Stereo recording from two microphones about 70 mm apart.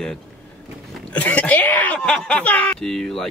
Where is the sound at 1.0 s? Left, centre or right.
Left.